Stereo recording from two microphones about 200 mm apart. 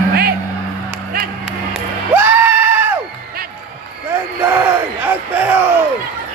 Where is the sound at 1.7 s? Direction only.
10° right (ahead or behind).